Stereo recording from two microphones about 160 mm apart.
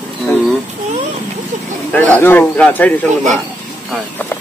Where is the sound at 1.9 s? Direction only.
10° left (ahead or behind).